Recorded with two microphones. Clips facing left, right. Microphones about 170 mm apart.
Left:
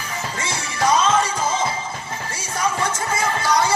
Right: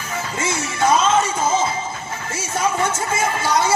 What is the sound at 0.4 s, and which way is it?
Music, 25° right (ahead or behind).